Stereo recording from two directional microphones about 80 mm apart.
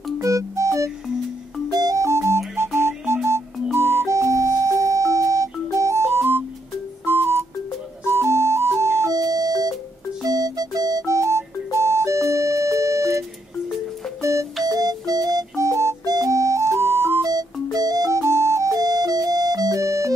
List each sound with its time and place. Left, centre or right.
0.2 s music: right
1.8 s music: right
2.0 s music: right
9.1 s doorbell: right
10.2 s music: right
14.2 s music: right
14.7 s music: right
15.5 s music: right
16.1 s music: right
17.2 s music: right
18.2 s music: right
18.8 s music: right